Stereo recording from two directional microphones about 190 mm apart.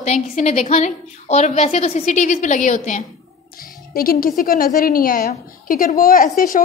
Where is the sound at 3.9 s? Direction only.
50° left (ahead or behind).